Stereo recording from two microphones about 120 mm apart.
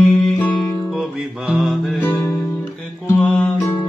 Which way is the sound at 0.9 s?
Centre (ahead or behind).